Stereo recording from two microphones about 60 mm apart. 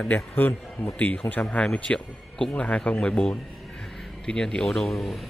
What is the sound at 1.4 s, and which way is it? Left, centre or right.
Speech, centre.